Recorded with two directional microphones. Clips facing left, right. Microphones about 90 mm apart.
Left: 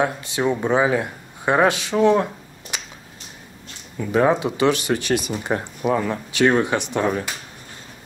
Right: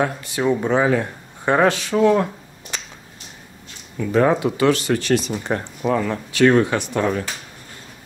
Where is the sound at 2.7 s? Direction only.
15° left (ahead or behind).